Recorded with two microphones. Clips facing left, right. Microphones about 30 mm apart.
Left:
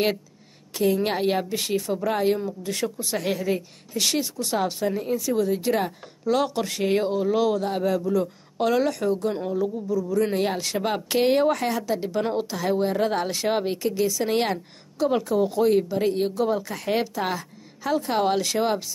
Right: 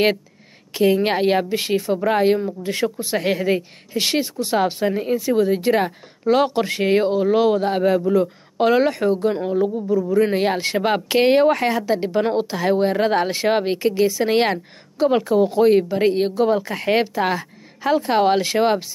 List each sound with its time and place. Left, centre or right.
0.7 s speech: right